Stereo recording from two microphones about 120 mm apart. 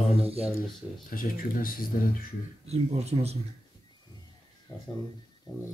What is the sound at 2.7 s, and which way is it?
Speech, 60° right (ahead or behind).